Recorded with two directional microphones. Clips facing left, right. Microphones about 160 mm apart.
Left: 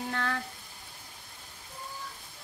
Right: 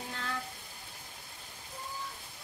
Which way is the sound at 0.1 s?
65° left (ahead or behind).